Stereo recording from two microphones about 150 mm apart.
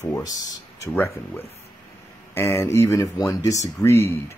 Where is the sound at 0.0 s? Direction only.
25° left (ahead or behind).